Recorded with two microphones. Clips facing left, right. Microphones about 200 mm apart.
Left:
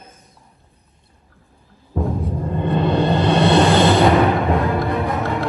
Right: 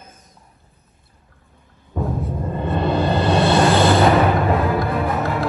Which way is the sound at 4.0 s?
Centre (ahead or behind).